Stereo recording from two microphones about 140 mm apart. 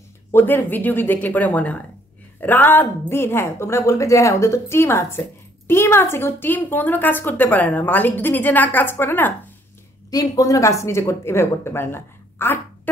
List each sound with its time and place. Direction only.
0.3 s speech: 15° left (ahead or behind)